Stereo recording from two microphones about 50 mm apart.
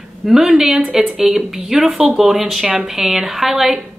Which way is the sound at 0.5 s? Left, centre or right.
Centre.